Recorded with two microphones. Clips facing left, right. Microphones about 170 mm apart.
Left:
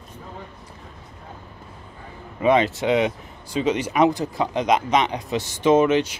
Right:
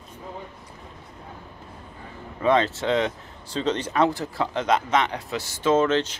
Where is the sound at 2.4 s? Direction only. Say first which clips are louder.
Left 3 dB; 15° left (ahead or behind).